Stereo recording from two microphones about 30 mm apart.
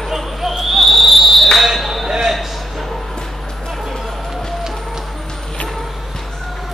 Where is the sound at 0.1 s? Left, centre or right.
Centre.